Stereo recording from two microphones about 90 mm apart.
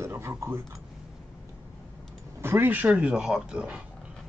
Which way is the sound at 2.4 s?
25° right (ahead or behind).